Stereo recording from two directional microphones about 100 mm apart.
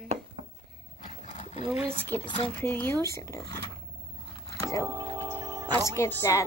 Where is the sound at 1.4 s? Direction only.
90° left.